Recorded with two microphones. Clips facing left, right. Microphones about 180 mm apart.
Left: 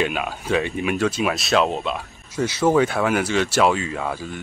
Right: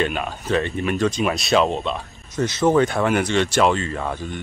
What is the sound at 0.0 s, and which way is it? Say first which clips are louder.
Speech: even; 5° left (ahead or behind).